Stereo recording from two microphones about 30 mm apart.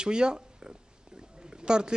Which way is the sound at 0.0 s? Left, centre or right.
Right.